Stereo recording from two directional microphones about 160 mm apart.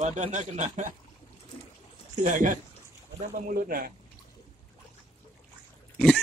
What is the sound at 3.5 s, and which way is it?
Speech, 65° right (ahead or behind).